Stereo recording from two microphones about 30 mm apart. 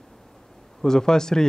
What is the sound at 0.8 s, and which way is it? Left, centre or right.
Speech, centre.